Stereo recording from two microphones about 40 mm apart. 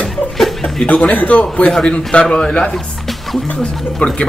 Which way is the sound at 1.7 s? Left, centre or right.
Left.